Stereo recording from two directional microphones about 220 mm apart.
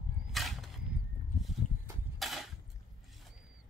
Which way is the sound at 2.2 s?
Centre (ahead or behind).